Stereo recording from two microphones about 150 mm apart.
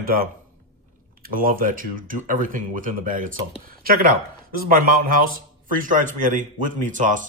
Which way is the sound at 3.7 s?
75° right (ahead or behind).